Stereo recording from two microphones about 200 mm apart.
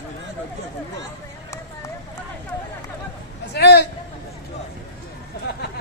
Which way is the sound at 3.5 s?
55° left (ahead or behind).